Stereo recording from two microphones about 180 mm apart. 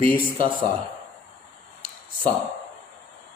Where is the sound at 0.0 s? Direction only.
30° right (ahead or behind).